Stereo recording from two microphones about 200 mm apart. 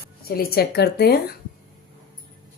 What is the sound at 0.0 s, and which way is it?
Speech, 50° left (ahead or behind).